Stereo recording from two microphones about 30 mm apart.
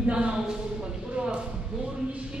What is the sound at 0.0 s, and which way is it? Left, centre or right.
Speech, right.